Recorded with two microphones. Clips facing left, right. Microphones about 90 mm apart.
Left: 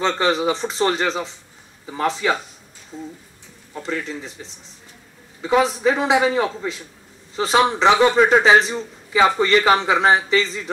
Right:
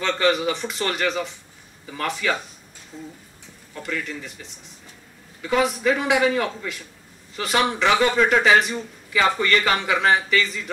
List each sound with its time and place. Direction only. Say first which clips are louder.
0.0 s a man's voice: left 2 dB; 25° left (ahead or behind)
3.7 s a man's voice: left 3 dB; 25° left (ahead or behind)